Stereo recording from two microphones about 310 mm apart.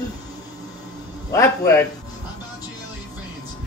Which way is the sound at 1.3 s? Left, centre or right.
Centre.